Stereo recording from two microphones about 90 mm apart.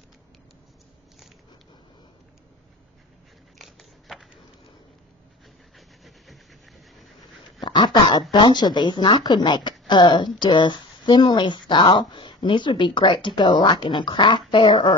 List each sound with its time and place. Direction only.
3.5 s scissors: centre (ahead or behind)
5.8 s a sound: centre (ahead or behind)
7.6 s speech: 55° left (ahead or behind)